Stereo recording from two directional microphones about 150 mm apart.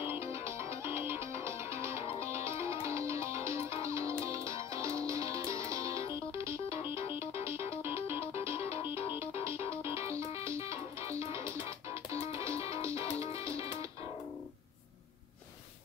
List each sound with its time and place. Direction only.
0.0 s music: 15° right (ahead or behind)
8.9 s music: 35° left (ahead or behind)
9.9 s music: 20° right (ahead or behind)